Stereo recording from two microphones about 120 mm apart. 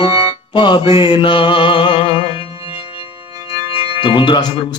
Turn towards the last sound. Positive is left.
turn(degrees=40)  # may be behind; listen again after turning